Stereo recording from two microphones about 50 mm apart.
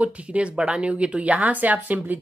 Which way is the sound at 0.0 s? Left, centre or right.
Right.